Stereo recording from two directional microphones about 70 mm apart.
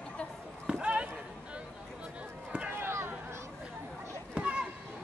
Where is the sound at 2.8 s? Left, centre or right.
Right.